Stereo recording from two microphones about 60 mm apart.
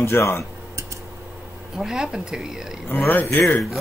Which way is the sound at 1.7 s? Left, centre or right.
Centre.